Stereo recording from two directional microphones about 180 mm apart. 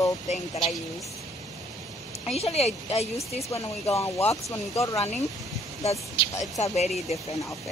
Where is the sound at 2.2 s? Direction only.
35° left (ahead or behind).